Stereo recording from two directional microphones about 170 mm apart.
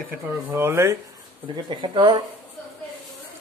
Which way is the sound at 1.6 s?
25° right (ahead or behind).